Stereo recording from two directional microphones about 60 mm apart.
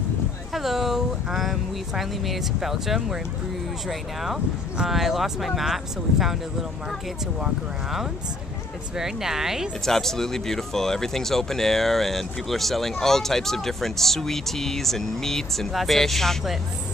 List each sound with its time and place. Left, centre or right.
0.5 s speech: centre
4.7 s speech: centre
7.3 s speech: centre
9.8 s speech: centre